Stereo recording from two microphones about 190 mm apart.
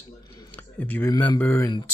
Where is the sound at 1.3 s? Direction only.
10° left (ahead or behind).